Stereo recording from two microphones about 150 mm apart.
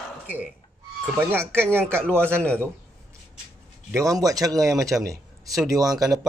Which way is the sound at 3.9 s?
25° right (ahead or behind).